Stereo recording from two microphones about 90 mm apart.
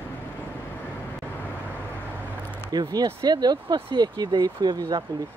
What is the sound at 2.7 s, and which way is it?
Speech, 45° right (ahead or behind).